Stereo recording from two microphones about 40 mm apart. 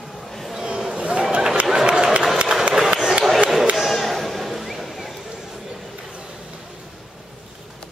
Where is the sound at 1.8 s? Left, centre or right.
Right.